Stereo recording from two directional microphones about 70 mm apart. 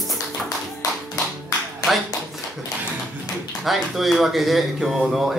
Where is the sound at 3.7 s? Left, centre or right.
Centre.